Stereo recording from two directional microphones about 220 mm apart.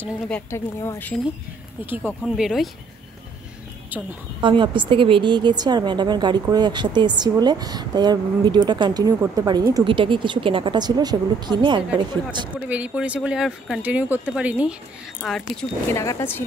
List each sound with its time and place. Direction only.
0.3 s a woman's voice: 10° left (ahead or behind)
3.9 s a woman's voice: 10° right (ahead or behind)
4.4 s a woman's voice: 20° right (ahead or behind)
12.5 s speech: 5° right (ahead or behind)
16.0 s a woman's voice: 15° left (ahead or behind)